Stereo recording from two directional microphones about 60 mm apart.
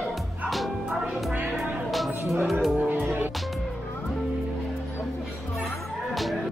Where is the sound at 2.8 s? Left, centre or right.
Right.